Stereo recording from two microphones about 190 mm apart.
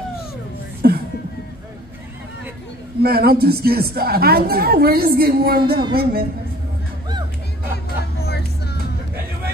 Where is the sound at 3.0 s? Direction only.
55° right (ahead or behind).